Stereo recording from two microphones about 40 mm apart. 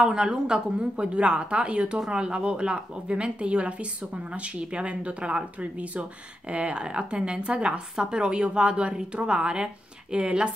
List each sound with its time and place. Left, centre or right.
0.0 s speech: right